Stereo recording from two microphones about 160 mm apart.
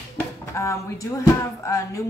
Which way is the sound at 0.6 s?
20° left (ahead or behind).